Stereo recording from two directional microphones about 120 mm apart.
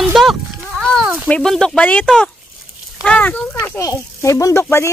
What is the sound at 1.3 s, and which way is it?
Speech, 5° left (ahead or behind).